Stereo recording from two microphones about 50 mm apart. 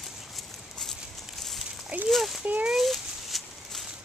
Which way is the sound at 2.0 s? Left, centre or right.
Centre.